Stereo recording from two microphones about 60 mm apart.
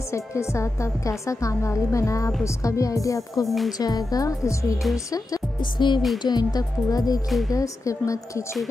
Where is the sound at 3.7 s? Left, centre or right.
Left.